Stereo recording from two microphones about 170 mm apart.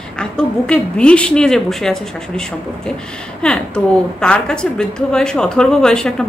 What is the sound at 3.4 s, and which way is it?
A woman's voice, 5° left (ahead or behind).